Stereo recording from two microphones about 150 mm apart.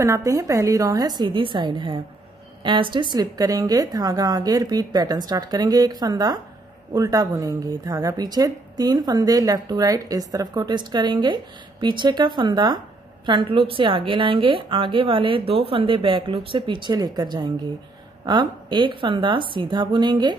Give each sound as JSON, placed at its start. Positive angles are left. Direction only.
{"t": 0.0, "sound": "a woman's voice", "side_deg": -20}